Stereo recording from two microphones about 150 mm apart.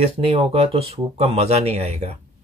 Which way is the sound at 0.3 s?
40° right (ahead or behind).